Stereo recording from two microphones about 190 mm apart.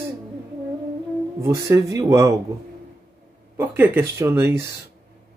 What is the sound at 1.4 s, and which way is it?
Speech, 20° right (ahead or behind).